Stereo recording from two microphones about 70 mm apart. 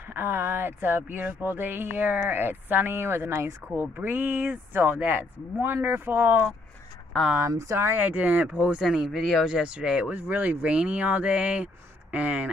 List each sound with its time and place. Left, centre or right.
0.1 s speech: right
3.9 s speech: right
7.3 s speech: right
7.9 s speech: right
8.8 s speech: centre
10.1 s speech: right